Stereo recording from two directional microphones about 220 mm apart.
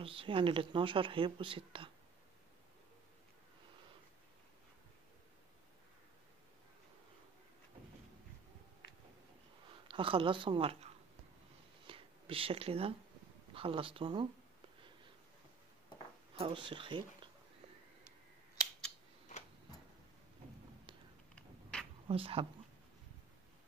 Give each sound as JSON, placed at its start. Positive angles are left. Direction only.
{"t": 0.0, "sound": "speech", "side_deg": -25}
{"t": 9.8, "sound": "speech", "side_deg": -25}
{"t": 11.9, "sound": "a sound", "side_deg": -25}
{"t": 13.5, "sound": "speech", "side_deg": -25}
{"t": 16.3, "sound": "speech", "side_deg": -25}
{"t": 22.0, "sound": "speech", "side_deg": -25}